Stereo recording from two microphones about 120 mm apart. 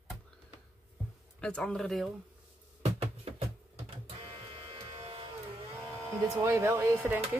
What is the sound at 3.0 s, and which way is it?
Music, 55° right (ahead or behind).